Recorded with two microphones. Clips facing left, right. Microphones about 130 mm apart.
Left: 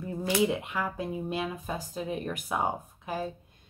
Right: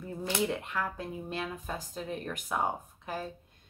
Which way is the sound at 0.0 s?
5° left (ahead or behind).